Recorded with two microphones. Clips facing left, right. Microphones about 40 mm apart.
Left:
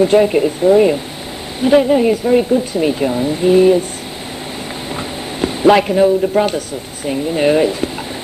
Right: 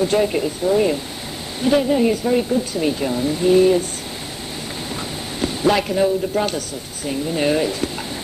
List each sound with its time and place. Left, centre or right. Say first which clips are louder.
0.0 s speech: left 7 dB; left
5.4 s speech: left 7 dB; left